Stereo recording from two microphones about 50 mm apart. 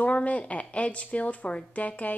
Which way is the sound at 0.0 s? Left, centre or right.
Left.